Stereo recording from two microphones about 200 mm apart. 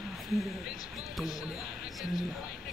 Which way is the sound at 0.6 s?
50° left (ahead or behind).